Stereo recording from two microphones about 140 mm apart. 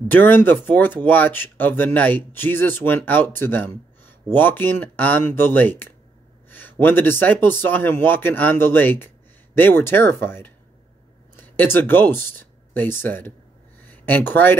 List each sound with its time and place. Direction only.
0.1 s speech: 15° left (ahead or behind)